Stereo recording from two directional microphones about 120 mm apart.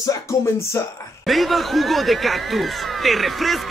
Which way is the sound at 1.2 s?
Centre (ahead or behind).